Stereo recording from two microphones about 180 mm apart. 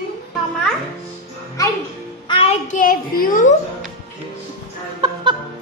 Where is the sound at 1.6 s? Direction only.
20° left (ahead or behind).